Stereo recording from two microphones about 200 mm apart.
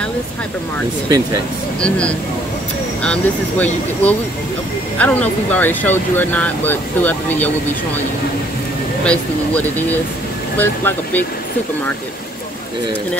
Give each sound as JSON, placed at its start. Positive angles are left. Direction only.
{"t": 1.8, "sound": "speech", "side_deg": 5}
{"t": 9.0, "sound": "speech", "side_deg": 5}